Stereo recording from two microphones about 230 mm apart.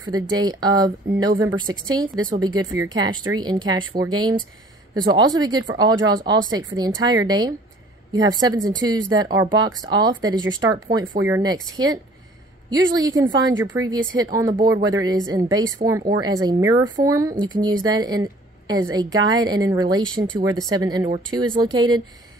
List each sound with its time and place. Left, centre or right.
0.0 s speech: centre